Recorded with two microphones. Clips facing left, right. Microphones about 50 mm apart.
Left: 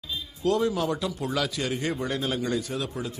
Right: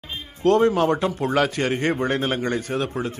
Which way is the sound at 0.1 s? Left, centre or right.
Right.